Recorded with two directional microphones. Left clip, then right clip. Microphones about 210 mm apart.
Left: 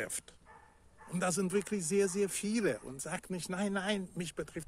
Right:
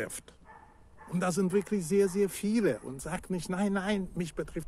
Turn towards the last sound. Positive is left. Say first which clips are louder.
# right 4 dB
turn(degrees=0)  # may be behind; listen again after turning